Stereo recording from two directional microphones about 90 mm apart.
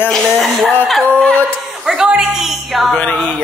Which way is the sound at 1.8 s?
5° right (ahead or behind).